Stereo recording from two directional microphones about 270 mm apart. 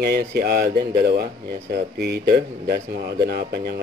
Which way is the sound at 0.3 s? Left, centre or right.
Right.